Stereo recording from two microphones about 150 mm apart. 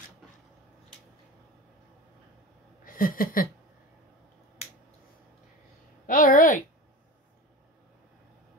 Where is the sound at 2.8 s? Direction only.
70° left (ahead or behind).